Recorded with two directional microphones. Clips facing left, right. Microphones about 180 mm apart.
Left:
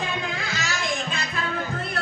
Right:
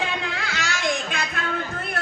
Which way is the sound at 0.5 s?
70° right (ahead or behind).